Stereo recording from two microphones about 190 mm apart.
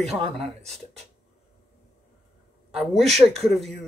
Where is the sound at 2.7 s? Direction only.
Centre (ahead or behind).